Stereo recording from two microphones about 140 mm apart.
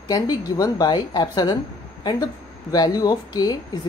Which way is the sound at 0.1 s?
25° left (ahead or behind).